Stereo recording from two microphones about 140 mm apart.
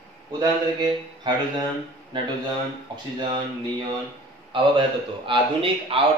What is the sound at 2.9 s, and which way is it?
Speech, 30° right (ahead or behind).